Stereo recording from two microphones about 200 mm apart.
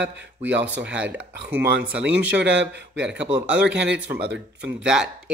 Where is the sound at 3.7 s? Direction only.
60° right (ahead or behind).